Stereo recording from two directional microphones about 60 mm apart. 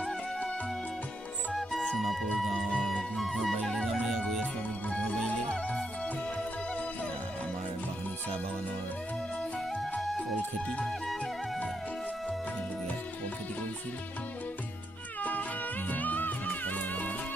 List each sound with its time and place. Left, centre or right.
2.9 s music: centre
5.2 s music: centre
15.9 s music: left